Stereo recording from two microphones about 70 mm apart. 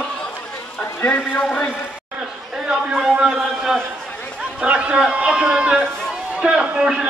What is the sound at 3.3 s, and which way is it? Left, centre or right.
Speech, centre.